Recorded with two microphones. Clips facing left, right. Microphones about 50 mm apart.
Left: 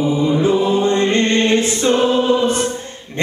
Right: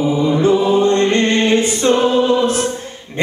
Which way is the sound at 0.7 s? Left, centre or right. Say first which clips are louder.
Right 2 dB; centre.